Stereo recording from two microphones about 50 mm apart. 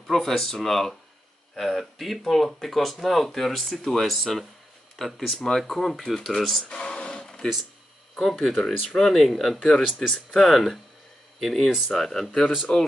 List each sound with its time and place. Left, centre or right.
0.0 s speech: centre
6.7 s a sound: centre
8.2 s speech: centre
12.7 s speech: left